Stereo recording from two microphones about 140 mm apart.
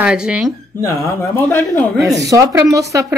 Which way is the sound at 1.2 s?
15° left (ahead or behind).